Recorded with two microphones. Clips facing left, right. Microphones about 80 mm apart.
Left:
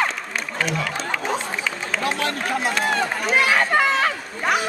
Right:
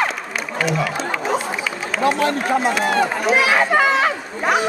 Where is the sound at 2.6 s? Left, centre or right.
Centre.